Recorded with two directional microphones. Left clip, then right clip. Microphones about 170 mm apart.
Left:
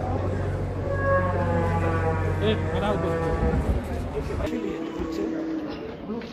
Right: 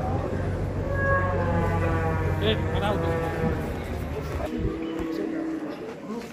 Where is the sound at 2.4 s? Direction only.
55° left (ahead or behind).